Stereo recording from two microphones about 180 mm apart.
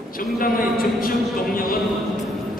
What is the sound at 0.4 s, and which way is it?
Speech, 55° left (ahead or behind).